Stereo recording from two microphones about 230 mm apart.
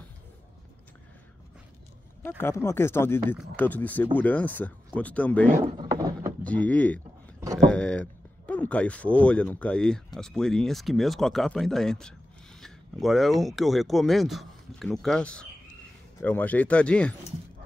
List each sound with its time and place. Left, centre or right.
2.2 s speech: centre
5.6 s rowboat: centre
6.4 s speech: centre